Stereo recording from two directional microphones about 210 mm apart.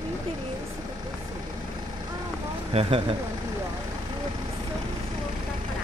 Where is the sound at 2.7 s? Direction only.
30° right (ahead or behind).